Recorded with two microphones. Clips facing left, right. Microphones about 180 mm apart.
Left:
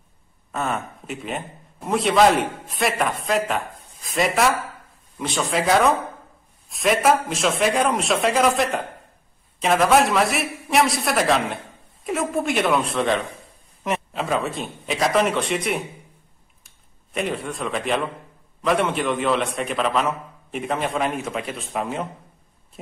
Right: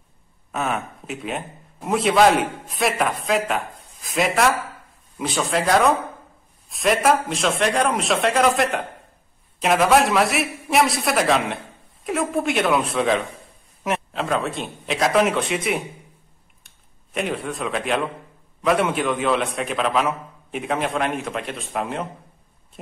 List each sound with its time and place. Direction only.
0.5 s a man's voice: 5° right (ahead or behind)
17.1 s a man's voice: centre (ahead or behind)